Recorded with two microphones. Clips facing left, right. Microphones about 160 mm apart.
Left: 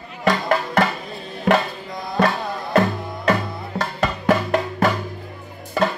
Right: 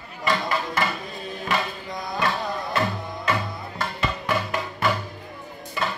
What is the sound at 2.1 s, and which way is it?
Music, 50° left (ahead or behind).